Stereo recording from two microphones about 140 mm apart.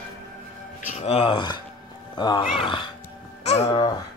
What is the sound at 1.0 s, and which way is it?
Speech, 40° left (ahead or behind).